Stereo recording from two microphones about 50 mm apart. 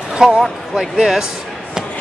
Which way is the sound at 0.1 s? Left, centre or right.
Centre.